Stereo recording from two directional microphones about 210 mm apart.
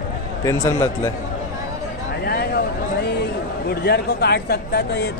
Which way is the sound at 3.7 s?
50° left (ahead or behind).